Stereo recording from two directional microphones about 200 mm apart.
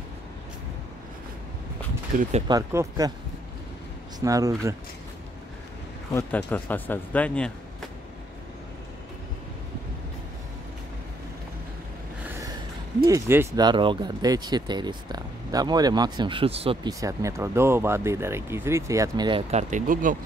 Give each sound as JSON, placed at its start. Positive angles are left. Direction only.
{"t": 2.4, "sound": "speech", "side_deg": -15}
{"t": 4.2, "sound": "speech", "side_deg": -15}
{"t": 6.1, "sound": "speech", "side_deg": 10}
{"t": 13.0, "sound": "speech", "side_deg": -15}
{"t": 17.0, "sound": "speech", "side_deg": -15}
{"t": 19.7, "sound": "speech", "side_deg": -40}